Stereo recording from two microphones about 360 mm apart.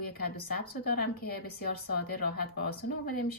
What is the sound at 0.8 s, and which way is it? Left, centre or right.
Speech, left.